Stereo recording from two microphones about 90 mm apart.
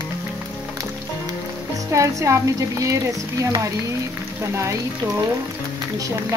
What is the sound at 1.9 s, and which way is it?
A woman's voice, 35° right (ahead or behind).